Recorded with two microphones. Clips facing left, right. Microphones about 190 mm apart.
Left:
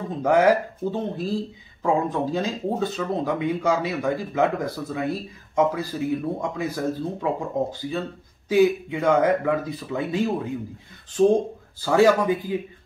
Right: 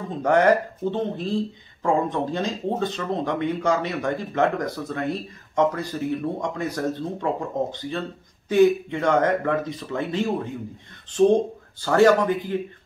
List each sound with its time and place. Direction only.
0.2 s speech: 5° left (ahead or behind)
11.8 s speech: 10° left (ahead or behind)